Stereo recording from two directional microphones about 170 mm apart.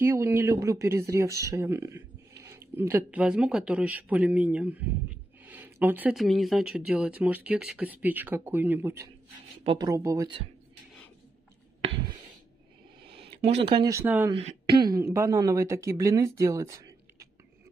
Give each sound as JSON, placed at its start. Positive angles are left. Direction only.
{"t": 0.0, "sound": "speech", "side_deg": -15}
{"t": 9.6, "sound": "speech", "side_deg": -30}
{"t": 13.0, "sound": "a sound", "side_deg": -30}
{"t": 13.8, "sound": "speech", "side_deg": -15}
{"t": 14.3, "sound": "speech", "side_deg": -35}
{"t": 14.8, "sound": "speech", "side_deg": -20}